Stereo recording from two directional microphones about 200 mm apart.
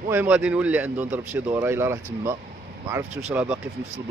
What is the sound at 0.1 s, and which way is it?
A man's voice, 10° right (ahead or behind).